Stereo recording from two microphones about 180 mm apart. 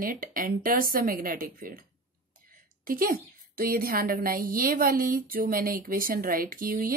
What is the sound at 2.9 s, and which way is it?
Speech, 50° right (ahead or behind).